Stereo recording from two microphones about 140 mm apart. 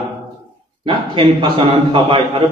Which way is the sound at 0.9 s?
40° right (ahead or behind).